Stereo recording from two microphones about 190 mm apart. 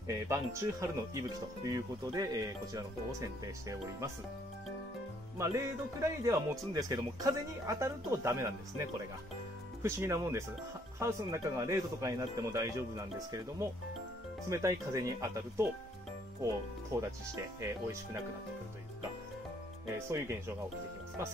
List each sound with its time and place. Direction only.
0.1 s speech: 15° right (ahead or behind)
5.4 s speech: 15° right (ahead or behind)
9.8 s speech: 15° right (ahead or behind)
20.1 s speech: 15° right (ahead or behind)